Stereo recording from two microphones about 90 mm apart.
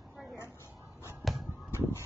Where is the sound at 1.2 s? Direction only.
Centre (ahead or behind).